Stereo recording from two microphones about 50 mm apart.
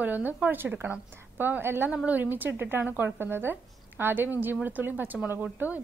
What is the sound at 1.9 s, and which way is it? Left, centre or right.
Speech, right.